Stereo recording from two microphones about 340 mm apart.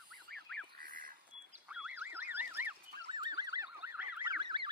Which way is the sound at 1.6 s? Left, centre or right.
Centre.